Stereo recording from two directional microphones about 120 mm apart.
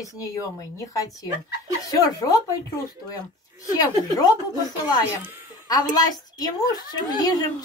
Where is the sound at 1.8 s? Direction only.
30° left (ahead or behind).